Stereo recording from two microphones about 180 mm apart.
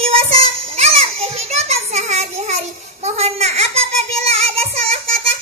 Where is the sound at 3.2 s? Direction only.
35° right (ahead or behind).